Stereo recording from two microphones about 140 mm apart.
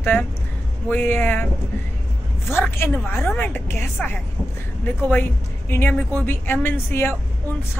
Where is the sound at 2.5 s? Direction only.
15° left (ahead or behind).